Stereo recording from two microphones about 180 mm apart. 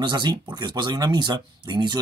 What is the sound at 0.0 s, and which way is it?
Speech, 25° right (ahead or behind).